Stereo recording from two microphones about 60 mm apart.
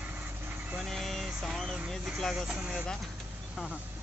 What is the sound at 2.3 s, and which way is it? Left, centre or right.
Speech, centre.